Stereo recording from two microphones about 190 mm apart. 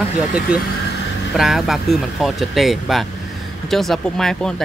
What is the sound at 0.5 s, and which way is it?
Speech, 5° right (ahead or behind).